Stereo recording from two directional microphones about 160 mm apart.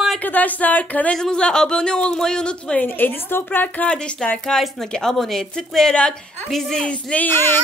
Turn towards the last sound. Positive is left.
turn(degrees=15)  # may be behind; listen again after turning